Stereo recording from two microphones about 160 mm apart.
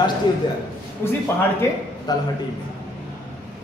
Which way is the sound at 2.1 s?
25° left (ahead or behind).